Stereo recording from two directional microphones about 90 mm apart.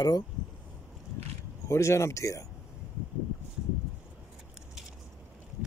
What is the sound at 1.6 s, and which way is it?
Speech, 35° left (ahead or behind).